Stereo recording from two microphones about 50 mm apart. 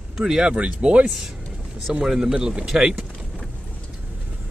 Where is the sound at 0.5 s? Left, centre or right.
Right.